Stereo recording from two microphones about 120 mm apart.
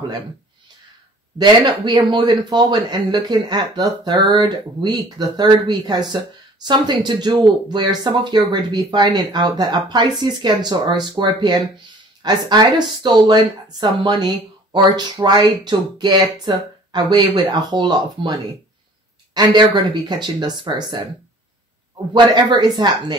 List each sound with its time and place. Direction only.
1.4 s speech: 35° right (ahead or behind)
19.3 s speech: 40° right (ahead or behind)
22.1 s speech: 40° right (ahead or behind)